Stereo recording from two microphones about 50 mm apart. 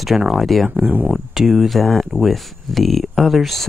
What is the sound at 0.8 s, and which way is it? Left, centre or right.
Speech, right.